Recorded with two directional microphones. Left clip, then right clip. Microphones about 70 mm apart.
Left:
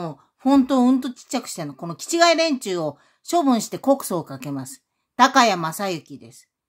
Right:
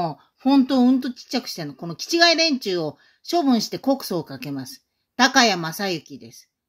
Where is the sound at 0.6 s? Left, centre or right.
Left.